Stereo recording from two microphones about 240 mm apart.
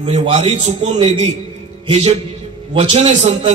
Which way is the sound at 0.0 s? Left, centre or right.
Right.